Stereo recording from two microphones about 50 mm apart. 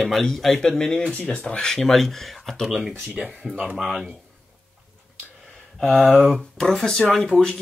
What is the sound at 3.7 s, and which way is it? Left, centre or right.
Speech, centre.